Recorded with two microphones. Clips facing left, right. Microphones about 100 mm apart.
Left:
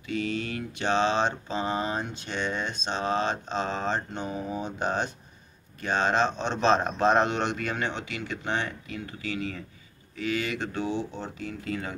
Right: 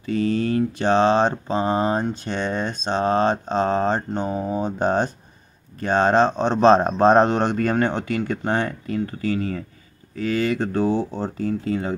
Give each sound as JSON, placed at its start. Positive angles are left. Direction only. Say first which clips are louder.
{"t": 0.0, "sound": "speech", "louder": "right 9 dB", "side_deg": -40}